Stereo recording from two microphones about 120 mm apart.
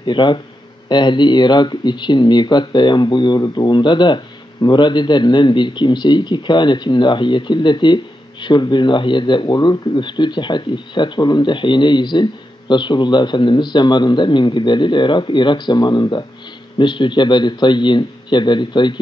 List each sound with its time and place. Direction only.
0.0 s speech: 40° left (ahead or behind)